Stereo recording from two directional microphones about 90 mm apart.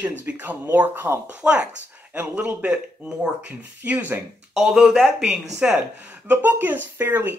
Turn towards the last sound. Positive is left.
turn(degrees=-20)  # may be behind; listen again after turning